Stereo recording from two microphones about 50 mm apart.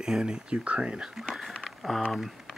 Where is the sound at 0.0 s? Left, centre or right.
Centre.